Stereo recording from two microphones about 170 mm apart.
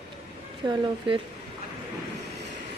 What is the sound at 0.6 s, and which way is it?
Speech, 25° right (ahead or behind).